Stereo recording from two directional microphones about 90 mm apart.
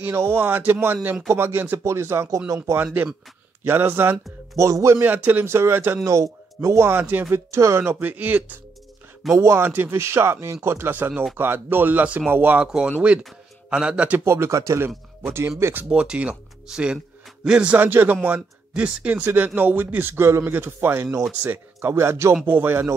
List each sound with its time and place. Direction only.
0.0 s speech: 30° right (ahead or behind)
2.8 s speech: 20° right (ahead or behind)
4.6 s speech: 35° right (ahead or behind)
5.0 s speech: 20° right (ahead or behind)
6.0 s speech: 35° right (ahead or behind); by 8.5 s 20° right (ahead or behind)
9.3 s speech: 30° right (ahead or behind)
12.6 s a man's voice: 10° right (ahead or behind)
14.2 s speech: 30° right (ahead or behind)
15.6 s speech: 20° right (ahead or behind)
16.0 s a man's voice: 10° right (ahead or behind)
21.8 s speech: 30° right (ahead or behind)